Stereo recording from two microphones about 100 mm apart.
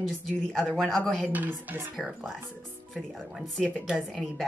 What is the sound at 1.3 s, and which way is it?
Speech, 15° right (ahead or behind).